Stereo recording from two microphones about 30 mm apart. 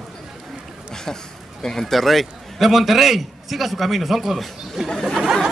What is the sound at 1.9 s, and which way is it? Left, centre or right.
A man's voice, centre.